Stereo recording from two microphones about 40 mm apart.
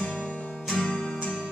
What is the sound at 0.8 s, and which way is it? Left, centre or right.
Music, left.